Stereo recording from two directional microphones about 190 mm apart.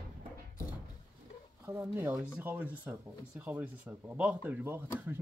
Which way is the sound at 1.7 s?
10° right (ahead or behind).